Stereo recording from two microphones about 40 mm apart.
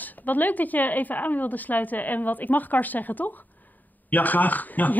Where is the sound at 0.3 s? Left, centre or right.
Left.